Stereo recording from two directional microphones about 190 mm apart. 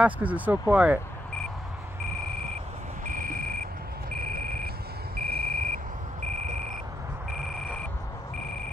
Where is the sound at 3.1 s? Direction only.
45° right (ahead or behind).